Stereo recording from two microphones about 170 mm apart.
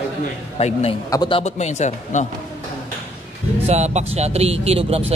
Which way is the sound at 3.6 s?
40° right (ahead or behind).